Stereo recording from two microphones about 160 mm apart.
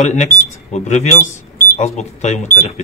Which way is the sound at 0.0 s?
50° left (ahead or behind).